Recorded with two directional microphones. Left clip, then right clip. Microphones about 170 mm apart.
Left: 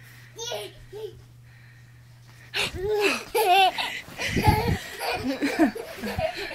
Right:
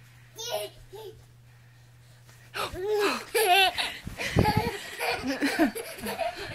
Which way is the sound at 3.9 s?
25° right (ahead or behind).